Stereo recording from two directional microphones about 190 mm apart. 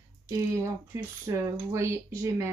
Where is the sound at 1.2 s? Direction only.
15° right (ahead or behind).